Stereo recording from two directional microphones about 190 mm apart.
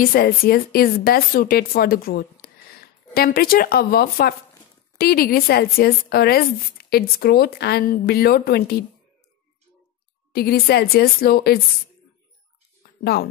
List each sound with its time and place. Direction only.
0.0 s speech: 50° left (ahead or behind)
10.3 s a woman's voice: 55° left (ahead or behind)
13.0 s a woman's voice: 55° left (ahead or behind)